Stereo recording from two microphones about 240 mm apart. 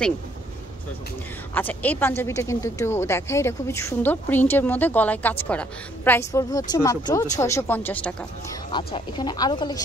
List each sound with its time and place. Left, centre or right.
1.5 s speech: centre
8.7 s speech: centre